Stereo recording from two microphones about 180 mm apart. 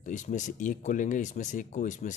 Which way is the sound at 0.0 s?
45° left (ahead or behind).